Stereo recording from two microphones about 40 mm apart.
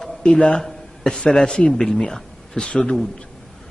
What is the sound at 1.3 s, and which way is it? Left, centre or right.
Speech, left.